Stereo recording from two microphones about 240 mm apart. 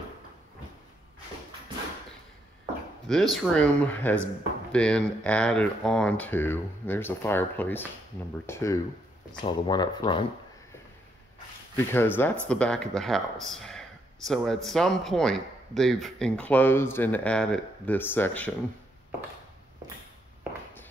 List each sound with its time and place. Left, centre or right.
3.1 s speech: centre
11.7 s speech: centre